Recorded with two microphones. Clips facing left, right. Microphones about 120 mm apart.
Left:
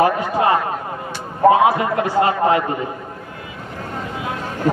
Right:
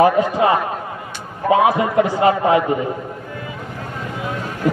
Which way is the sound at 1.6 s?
20° right (ahead or behind).